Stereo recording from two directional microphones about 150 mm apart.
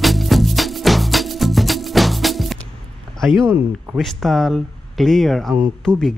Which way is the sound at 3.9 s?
Centre (ahead or behind).